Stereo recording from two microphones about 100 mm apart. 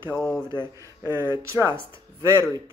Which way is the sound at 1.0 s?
25° right (ahead or behind).